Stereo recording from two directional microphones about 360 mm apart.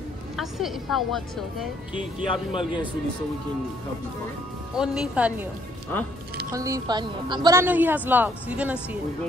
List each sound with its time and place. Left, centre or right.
0.4 s a woman's voice: centre
2.2 s speech: centre
4.7 s a woman's voice: centre
6.5 s a woman's voice: centre